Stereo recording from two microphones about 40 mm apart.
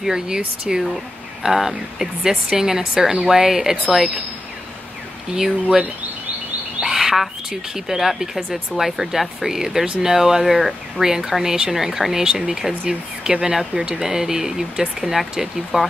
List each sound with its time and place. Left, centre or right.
0.0 s speech: centre
5.3 s speech: centre
6.8 s goose: centre
7.7 s speech: centre